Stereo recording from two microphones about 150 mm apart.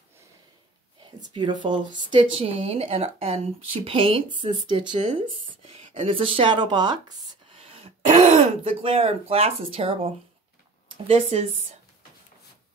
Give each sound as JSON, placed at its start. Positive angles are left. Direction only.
{"t": 1.3, "sound": "speech", "side_deg": -30}
{"t": 5.9, "sound": "speech", "side_deg": -35}
{"t": 7.6, "sound": "speech", "side_deg": -40}